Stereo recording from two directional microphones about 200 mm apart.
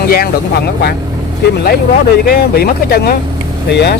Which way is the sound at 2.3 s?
50° left (ahead or behind).